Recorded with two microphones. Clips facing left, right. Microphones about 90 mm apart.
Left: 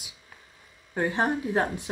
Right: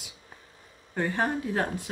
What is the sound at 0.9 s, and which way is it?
Speech, 15° left (ahead or behind).